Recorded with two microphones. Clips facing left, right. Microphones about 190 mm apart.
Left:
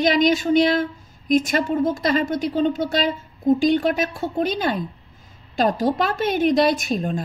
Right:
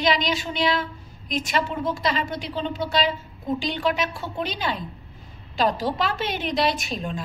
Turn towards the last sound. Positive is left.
turn(degrees=50)  # may be behind; listen again after turning